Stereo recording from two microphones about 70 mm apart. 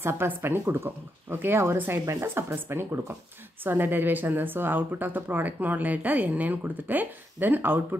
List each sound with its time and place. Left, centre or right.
0.0 s a woman's voice: right